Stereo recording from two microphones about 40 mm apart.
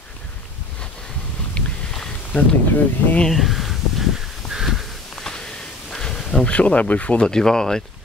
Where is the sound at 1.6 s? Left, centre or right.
Left.